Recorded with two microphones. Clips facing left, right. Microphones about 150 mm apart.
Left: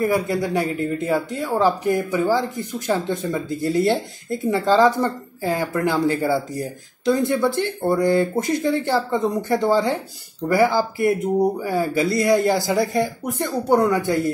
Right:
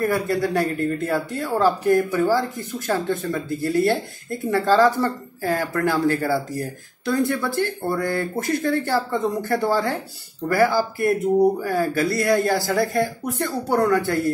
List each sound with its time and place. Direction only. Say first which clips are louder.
0.0 s a man's voice: left 1 dB; 15° left (ahead or behind)